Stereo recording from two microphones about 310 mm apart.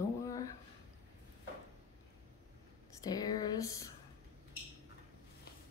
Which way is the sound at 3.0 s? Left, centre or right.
Centre.